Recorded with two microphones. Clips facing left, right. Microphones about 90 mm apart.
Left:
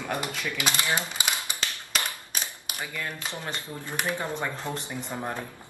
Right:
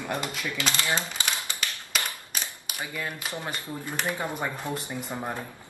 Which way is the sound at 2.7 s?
15° right (ahead or behind).